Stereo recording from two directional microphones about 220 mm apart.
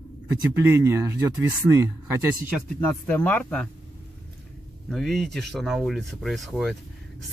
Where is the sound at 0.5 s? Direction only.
10° right (ahead or behind).